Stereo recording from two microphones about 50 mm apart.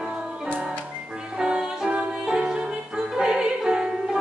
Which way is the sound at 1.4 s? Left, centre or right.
Centre.